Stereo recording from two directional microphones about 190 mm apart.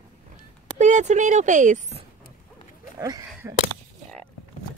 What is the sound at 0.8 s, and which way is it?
Speech, 40° right (ahead or behind).